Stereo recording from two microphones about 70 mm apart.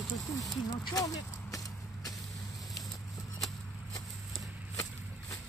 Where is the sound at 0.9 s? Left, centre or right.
Left.